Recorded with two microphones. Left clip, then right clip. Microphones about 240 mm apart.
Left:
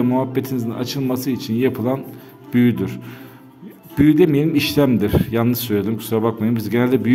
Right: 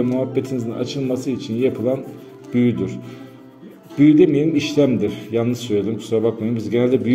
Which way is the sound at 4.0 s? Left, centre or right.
Left.